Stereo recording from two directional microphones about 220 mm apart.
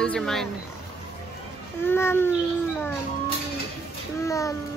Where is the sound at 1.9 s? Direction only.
10° left (ahead or behind).